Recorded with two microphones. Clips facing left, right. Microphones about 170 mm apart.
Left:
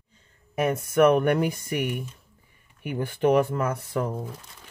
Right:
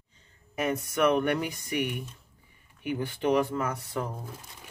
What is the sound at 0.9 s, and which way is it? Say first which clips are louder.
Speech: left 6 dB; 50° left (ahead or behind).